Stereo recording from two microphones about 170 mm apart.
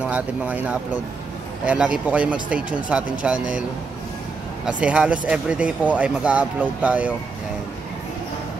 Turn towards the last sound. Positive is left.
turn(degrees=-5)  # may be behind; listen again after turning